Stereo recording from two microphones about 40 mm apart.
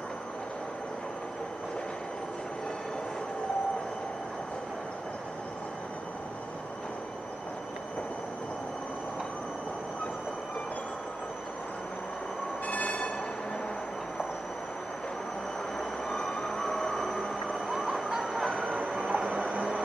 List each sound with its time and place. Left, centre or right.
12.6 s train: left
16.1 s train: centre
18.3 s train: centre
18.7 s train: right